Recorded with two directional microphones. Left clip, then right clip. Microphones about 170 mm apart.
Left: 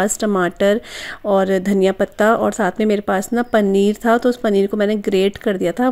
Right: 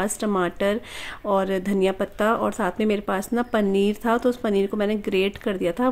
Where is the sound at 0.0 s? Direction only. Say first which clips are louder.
Left 6 dB; 30° left (ahead or behind).